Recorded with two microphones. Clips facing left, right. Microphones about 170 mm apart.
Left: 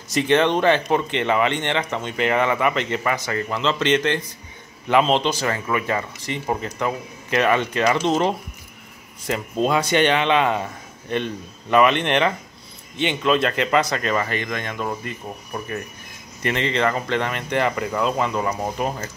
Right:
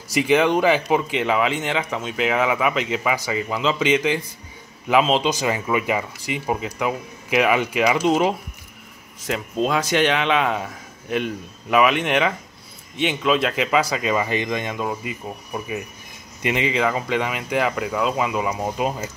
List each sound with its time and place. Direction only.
0.1 s speech: 5° right (ahead or behind)
5.3 s speech: 15° right (ahead or behind)